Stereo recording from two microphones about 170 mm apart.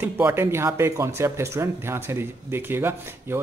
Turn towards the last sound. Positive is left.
turn(degrees=-15)  # may be behind; listen again after turning